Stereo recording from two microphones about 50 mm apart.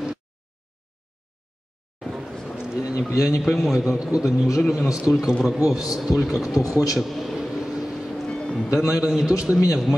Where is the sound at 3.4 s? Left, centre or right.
Centre.